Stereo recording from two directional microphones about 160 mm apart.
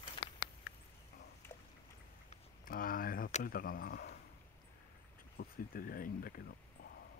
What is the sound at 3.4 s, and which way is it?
Speech, 65° left (ahead or behind).